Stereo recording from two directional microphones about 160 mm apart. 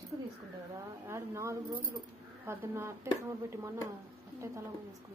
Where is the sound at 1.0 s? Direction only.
15° right (ahead or behind).